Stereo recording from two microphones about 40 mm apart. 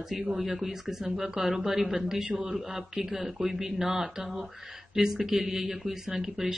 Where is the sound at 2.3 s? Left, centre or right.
Right.